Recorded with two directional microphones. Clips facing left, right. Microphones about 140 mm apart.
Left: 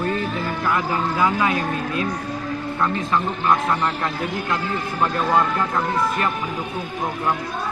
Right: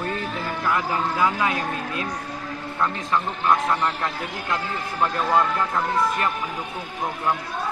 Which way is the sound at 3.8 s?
Centre (ahead or behind).